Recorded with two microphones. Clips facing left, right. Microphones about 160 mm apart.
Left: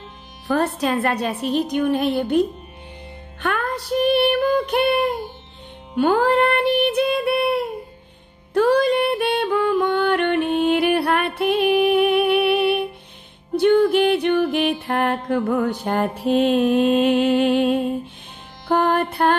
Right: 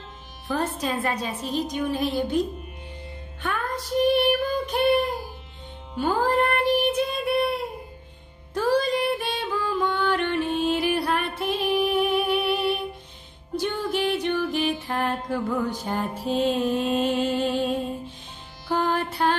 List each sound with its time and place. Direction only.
0.5 s a woman's voice: 70° left (ahead or behind)
3.4 s child singing: 70° left (ahead or behind)
5.9 s music: 70° left (ahead or behind)
18.7 s music: 60° left (ahead or behind)